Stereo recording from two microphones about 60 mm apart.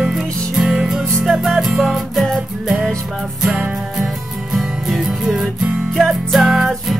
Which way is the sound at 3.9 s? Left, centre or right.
Centre.